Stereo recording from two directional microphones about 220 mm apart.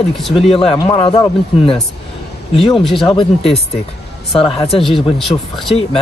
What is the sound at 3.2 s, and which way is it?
Speech, 25° left (ahead or behind).